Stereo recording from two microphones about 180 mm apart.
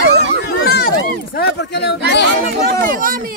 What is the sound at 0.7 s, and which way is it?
Speech, 55° left (ahead or behind).